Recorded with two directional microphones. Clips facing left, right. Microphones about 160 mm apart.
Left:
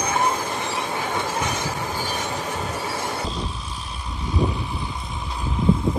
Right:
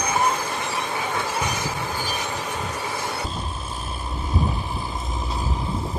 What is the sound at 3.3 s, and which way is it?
Vehicle, 50° right (ahead or behind).